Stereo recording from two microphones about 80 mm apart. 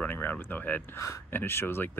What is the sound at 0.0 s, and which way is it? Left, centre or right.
Speech, left.